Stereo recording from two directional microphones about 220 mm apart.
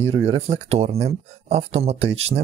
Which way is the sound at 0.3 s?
25° right (ahead or behind).